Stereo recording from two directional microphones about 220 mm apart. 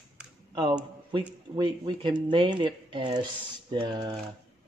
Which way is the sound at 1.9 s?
20° right (ahead or behind).